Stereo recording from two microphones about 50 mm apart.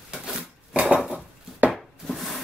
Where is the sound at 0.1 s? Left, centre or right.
Centre.